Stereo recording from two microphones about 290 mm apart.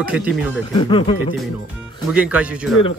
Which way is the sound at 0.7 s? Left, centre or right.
Centre.